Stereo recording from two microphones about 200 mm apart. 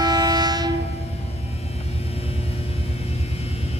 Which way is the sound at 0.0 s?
20° right (ahead or behind).